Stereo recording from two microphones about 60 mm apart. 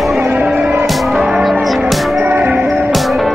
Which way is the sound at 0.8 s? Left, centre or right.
Centre.